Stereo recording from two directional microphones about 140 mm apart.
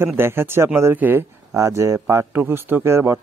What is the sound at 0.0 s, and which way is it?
Speech, 15° right (ahead or behind).